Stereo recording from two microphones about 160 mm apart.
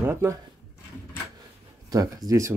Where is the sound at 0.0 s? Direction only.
15° right (ahead or behind).